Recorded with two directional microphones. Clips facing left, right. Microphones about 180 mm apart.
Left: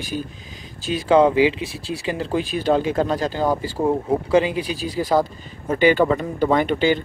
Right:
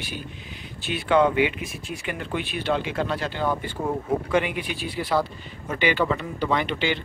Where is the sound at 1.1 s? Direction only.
35° left (ahead or behind).